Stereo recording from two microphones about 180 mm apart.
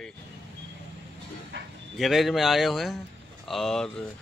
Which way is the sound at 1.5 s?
80° right.